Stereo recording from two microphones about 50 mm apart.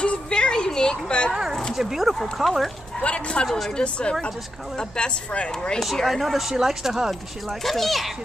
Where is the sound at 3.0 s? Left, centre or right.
Left.